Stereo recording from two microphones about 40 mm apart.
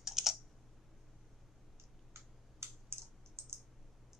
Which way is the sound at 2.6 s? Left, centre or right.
Right.